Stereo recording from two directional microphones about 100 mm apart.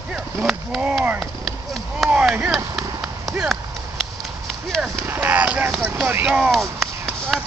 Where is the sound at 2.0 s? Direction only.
10° right (ahead or behind).